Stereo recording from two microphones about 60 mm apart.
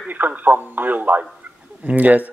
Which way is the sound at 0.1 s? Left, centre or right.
Right.